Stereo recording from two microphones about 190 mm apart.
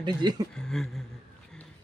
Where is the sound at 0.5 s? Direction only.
5° left (ahead or behind).